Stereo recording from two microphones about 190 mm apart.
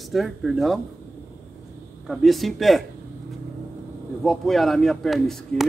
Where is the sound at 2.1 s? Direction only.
Centre (ahead or behind).